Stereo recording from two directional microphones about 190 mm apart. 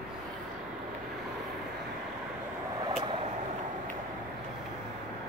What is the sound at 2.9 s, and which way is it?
Vehicle, 25° right (ahead or behind).